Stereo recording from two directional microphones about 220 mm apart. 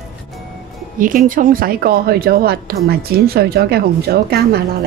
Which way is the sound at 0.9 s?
40° right (ahead or behind).